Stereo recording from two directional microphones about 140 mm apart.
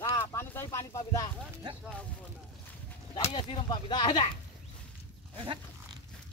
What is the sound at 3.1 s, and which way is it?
Speech, 45° left (ahead or behind).